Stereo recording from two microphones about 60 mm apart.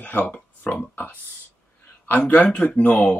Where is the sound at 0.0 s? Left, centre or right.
Left.